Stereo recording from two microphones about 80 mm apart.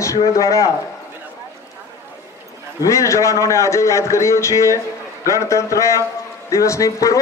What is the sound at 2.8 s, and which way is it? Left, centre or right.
A man's voice, left.